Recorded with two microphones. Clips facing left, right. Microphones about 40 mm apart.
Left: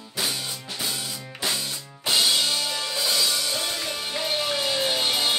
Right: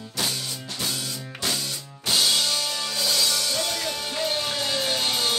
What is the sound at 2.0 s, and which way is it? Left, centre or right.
Music, centre.